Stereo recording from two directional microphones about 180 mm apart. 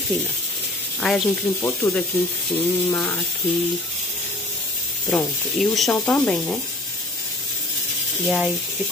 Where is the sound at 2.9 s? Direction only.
10° left (ahead or behind).